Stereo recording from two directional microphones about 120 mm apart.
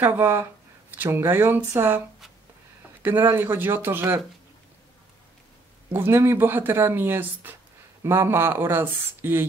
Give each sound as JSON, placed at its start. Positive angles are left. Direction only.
{"t": 0.0, "sound": "speech", "side_deg": -20}
{"t": 3.0, "sound": "speech", "side_deg": -15}
{"t": 5.9, "sound": "speech", "side_deg": -20}